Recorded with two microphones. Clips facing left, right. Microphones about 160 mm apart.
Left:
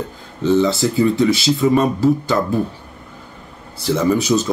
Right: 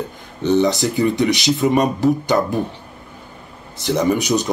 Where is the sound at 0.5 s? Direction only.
20° right (ahead or behind).